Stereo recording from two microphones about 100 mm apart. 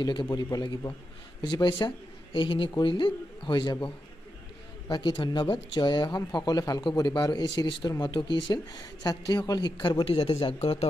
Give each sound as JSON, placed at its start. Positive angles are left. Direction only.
{"t": 0.0, "sound": "speech", "side_deg": 50}
{"t": 4.8, "sound": "speech", "side_deg": 45}